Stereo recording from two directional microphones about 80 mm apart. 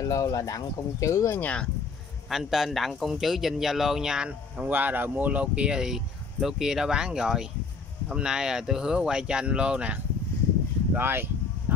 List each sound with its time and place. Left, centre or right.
0.0 s speech: left
1.4 s speech: centre
2.2 s speech: centre
11.0 s speech: right